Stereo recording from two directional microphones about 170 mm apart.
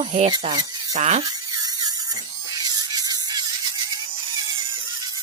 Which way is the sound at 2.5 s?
25° right (ahead or behind).